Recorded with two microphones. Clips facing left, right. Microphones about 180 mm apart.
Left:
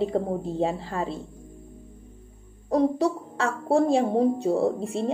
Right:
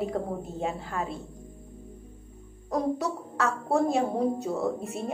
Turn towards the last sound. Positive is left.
turn(degrees=30)  # may be behind; listen again after turning